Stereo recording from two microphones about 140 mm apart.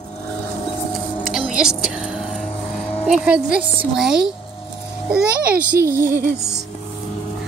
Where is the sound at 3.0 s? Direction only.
5° right (ahead or behind).